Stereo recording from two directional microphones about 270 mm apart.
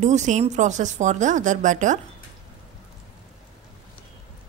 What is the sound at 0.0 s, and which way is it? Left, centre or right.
A woman's voice, right.